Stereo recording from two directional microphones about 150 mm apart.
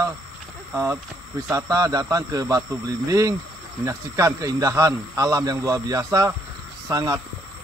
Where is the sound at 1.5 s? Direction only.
25° right (ahead or behind).